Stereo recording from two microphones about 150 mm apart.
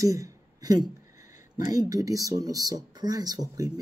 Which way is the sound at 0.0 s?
20° right (ahead or behind).